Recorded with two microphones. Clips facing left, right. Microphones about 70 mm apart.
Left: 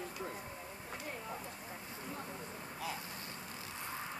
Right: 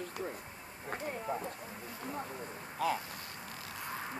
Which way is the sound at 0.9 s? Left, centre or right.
Right.